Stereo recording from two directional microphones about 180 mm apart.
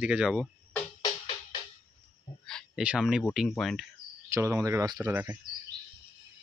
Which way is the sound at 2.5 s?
5° left (ahead or behind).